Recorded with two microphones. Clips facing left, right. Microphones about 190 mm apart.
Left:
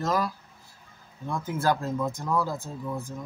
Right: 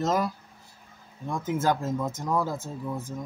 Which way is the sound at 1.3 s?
20° right (ahead or behind).